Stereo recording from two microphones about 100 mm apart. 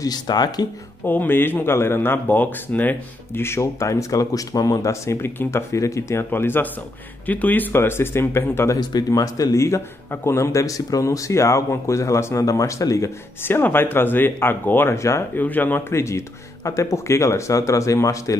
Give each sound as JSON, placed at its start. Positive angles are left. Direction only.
{"t": 0.0, "sound": "speech", "side_deg": 40}
{"t": 1.0, "sound": "speech", "side_deg": 20}
{"t": 8.7, "sound": "speech", "side_deg": 40}
{"t": 15.4, "sound": "speech", "side_deg": 20}